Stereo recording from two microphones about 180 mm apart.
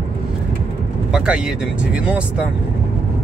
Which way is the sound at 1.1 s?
5° right (ahead or behind).